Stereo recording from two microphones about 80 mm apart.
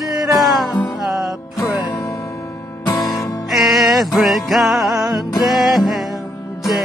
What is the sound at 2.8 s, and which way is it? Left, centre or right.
Music, left.